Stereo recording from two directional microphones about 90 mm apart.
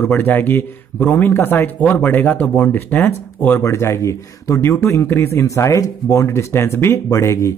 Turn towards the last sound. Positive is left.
turn(degrees=35)  # may be behind; listen again after turning